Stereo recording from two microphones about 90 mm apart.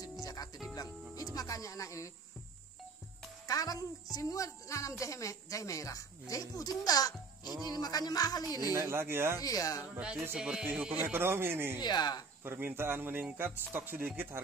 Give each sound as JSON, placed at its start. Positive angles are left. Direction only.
{"t": 0.2, "sound": "music", "side_deg": 45}
{"t": 3.4, "sound": "a woman's voice", "side_deg": 40}
{"t": 8.7, "sound": "speech", "side_deg": -25}
{"t": 9.4, "sound": "a woman's voice", "side_deg": 40}
{"t": 9.9, "sound": "music", "side_deg": -10}
{"t": 10.7, "sound": "speech", "side_deg": -20}
{"t": 11.8, "sound": "speech", "side_deg": 50}
{"t": 12.4, "sound": "speech", "side_deg": -25}